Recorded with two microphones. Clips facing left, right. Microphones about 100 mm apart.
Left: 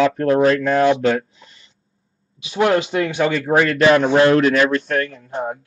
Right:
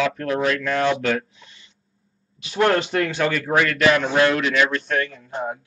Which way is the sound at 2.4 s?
10° left (ahead or behind).